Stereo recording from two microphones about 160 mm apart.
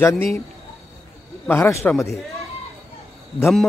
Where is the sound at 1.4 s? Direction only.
10° left (ahead or behind).